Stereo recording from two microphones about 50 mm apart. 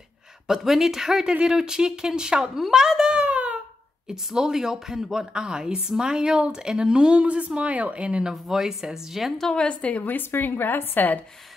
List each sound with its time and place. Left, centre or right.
0.5 s a woman's voice: centre
2.6 s a sound: centre
4.1 s a woman's voice: centre
8.3 s a woman's voice: centre
9.4 s a woman's voice: centre; by 11.1 s left